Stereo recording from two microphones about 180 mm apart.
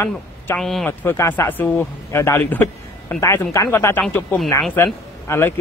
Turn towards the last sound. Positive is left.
turn(degrees=15)  # may be behind; listen again after turning